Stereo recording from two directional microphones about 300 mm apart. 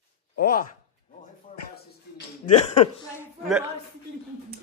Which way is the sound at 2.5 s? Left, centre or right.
Left.